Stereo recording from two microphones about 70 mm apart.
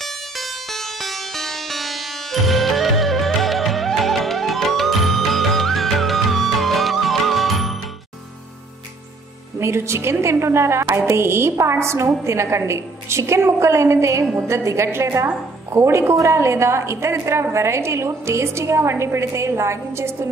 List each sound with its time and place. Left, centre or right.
0.4 s music: centre
9.6 s a woman's voice: right